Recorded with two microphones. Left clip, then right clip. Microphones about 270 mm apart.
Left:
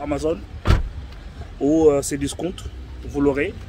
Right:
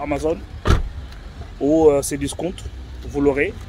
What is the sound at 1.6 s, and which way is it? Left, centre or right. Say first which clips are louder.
Speech: right 2 dB; centre.